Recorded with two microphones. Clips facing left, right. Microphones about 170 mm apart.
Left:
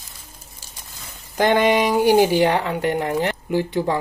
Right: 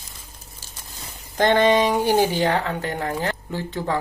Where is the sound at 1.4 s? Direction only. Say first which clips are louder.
Even; 10° left (ahead or behind).